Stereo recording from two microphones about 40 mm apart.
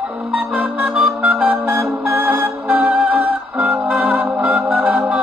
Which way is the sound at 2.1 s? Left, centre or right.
Right.